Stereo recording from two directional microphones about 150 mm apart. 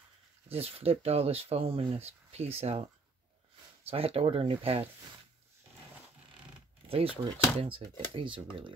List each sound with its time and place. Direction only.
0.5 s speech: 40° right (ahead or behind)
3.8 s speech: 40° right (ahead or behind)
6.9 s speech: 40° right (ahead or behind)